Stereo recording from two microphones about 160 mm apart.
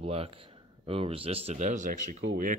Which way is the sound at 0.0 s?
35° right (ahead or behind).